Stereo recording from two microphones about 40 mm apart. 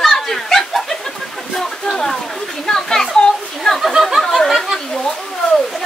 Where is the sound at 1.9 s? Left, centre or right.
Centre.